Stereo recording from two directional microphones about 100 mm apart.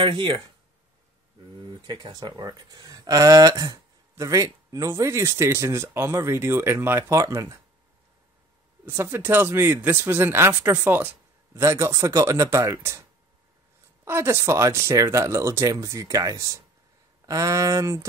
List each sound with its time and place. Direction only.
0.0 s speech: 50° right (ahead or behind)
1.7 s speech: 50° right (ahead or behind); by 7.5 s 30° right (ahead or behind)
8.8 s speech: 25° right (ahead or behind)
14.0 s speech: 25° right (ahead or behind)